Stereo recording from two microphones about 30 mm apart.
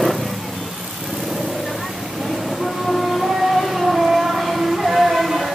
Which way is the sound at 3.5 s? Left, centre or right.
Centre.